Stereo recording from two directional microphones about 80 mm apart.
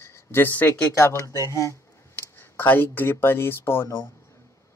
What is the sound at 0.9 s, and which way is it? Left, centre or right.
Speech, left.